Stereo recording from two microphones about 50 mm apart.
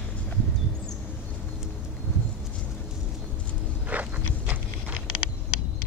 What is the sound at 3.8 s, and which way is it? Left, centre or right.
Walk, right.